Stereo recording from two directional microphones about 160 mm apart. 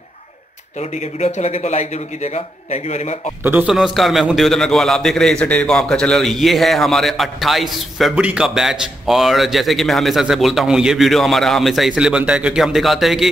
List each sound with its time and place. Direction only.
0.7 s a man's voice: 45° left (ahead or behind)
3.4 s a man's voice: 10° right (ahead or behind)